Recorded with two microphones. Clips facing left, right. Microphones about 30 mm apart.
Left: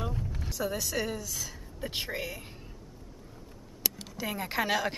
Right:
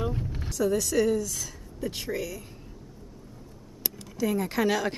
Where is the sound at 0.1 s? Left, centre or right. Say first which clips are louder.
Right 3 dB; centre.